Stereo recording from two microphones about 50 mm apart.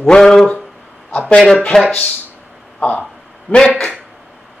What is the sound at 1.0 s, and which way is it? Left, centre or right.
Speech, left.